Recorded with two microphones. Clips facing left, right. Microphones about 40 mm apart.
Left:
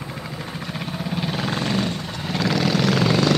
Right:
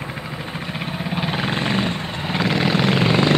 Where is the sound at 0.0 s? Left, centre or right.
Right.